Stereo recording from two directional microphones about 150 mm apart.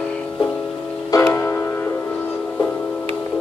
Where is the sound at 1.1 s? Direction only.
20° left (ahead or behind).